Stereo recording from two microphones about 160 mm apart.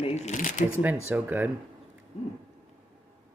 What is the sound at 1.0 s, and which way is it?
Speech, 10° right (ahead or behind).